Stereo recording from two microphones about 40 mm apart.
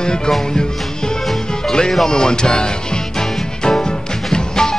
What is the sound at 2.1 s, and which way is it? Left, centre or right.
Music, centre.